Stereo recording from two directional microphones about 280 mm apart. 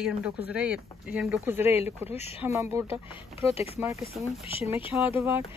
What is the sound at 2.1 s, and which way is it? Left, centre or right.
Speech, left.